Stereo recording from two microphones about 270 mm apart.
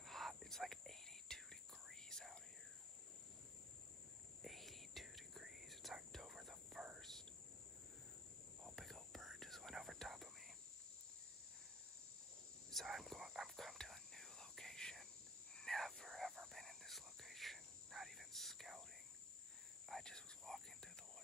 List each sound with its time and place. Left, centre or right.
0.0 s whispering: centre
4.4 s whispering: centre
8.7 s whispering: centre
12.7 s whispering: centre
19.9 s whispering: centre